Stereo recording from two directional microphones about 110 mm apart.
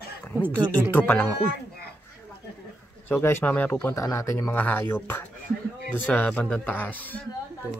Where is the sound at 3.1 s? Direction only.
20° left (ahead or behind).